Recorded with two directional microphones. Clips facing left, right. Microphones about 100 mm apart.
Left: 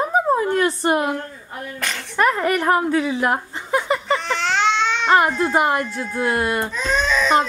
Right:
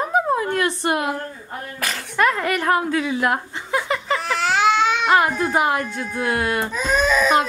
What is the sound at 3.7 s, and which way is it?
Speech, 5° left (ahead or behind).